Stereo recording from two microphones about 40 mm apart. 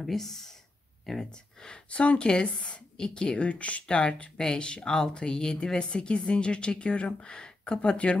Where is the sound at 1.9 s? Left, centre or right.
Left.